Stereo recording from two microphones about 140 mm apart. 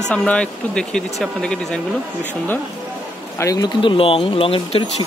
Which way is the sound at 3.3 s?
25° left (ahead or behind).